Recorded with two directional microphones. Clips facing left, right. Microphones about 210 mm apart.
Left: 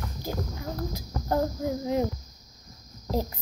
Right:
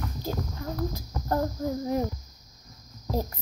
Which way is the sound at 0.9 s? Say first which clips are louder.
Left 1 dB; 20° left (ahead or behind).